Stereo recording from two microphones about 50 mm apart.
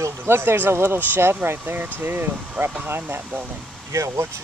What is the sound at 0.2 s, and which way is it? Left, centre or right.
Speech, right.